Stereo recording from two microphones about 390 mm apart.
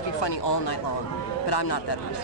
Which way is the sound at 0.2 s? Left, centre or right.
Left.